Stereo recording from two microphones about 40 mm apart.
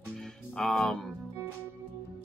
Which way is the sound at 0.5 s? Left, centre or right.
Centre.